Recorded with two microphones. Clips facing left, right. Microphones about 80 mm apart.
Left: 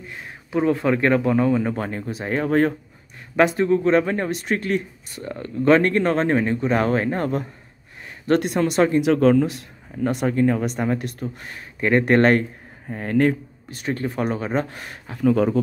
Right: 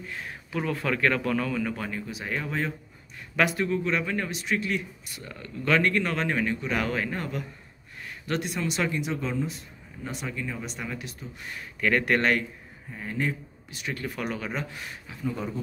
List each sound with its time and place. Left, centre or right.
0.5 s speech: left
3.3 s speech: left
8.3 s speech: left
9.0 s speech: left
11.8 s a man's voice: left
13.7 s speech: left
15.1 s speech: left